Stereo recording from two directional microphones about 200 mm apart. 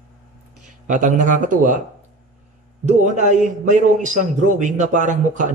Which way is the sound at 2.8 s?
35° right (ahead or behind).